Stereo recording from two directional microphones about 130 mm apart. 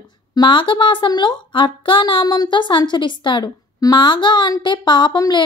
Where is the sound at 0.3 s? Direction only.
35° left (ahead or behind).